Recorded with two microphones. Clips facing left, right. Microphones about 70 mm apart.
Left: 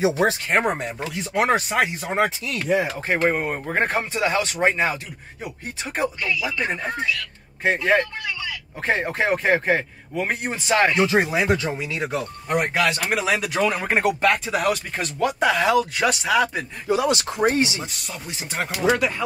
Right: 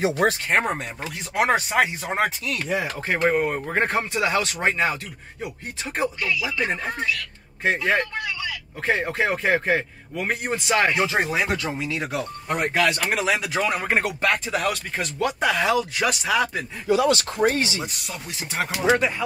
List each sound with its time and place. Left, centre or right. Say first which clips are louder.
0.5 s speech: left 1 dB; centre
2.8 s speech: left 2 dB; left
3.3 s speech: right 1 dB; centre
6.2 s speech: left 1 dB; left
7.6 s speech: left 2 dB; centre
16.8 s speech: right 1 dB; left
18.7 s speech: even; right